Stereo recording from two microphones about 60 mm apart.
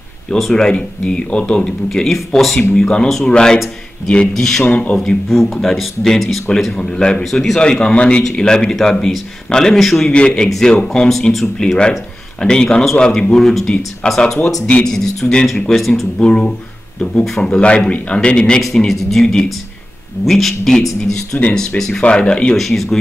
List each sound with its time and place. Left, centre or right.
0.4 s speech: centre
1.9 s speech: centre
4.6 s a man's voice: centre
5.0 s speech: centre
7.2 s speech: centre
10.0 s speech: centre
16.2 s a man's voice: centre
18.9 s speech: centre
22.6 s speech: centre